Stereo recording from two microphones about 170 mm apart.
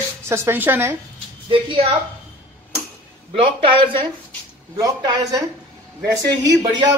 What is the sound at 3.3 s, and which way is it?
A man's voice, 30° right (ahead or behind).